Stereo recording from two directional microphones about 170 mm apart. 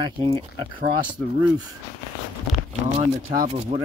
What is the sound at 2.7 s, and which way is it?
Speech, 40° right (ahead or behind).